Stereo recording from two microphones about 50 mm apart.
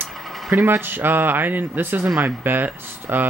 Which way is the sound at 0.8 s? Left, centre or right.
Right.